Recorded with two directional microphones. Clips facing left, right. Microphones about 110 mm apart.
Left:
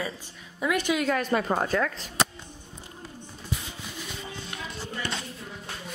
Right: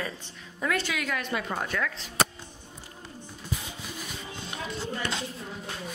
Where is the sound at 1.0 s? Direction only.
40° left (ahead or behind).